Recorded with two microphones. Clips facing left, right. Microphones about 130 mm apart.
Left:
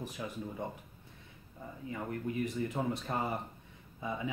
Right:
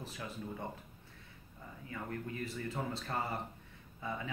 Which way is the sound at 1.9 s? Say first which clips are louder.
Left 4 dB; 20° left (ahead or behind).